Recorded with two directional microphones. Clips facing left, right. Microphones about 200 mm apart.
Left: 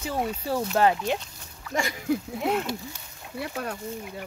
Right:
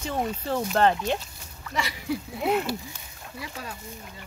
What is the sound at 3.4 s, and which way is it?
Speech, 60° left (ahead or behind).